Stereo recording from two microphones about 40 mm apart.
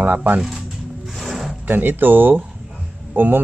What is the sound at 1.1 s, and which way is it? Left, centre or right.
Music, centre.